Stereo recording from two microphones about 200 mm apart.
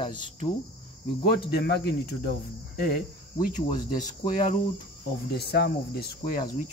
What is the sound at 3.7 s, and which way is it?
Speech, 25° left (ahead or behind).